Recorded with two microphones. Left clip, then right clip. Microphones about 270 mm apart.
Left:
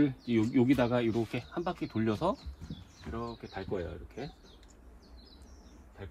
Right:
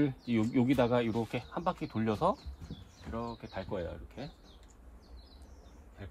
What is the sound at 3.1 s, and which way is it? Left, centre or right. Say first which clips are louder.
Speech: even; centre.